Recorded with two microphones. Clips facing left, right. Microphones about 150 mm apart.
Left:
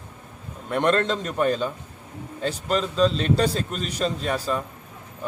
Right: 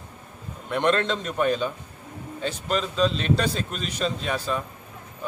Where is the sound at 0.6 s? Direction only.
Centre (ahead or behind).